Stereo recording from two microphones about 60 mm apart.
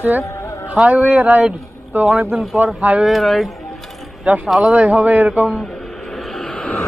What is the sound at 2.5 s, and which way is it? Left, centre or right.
Speech, right.